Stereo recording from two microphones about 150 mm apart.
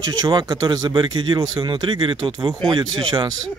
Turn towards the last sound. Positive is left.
turn(degrees=-30)  # may be behind; listen again after turning